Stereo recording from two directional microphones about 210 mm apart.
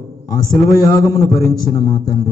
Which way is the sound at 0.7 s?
15° left (ahead or behind).